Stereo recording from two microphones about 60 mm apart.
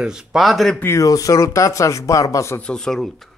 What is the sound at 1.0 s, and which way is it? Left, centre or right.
Speech, left.